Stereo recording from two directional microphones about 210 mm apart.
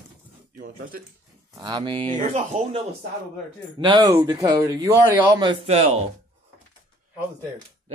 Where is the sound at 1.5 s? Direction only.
20° right (ahead or behind).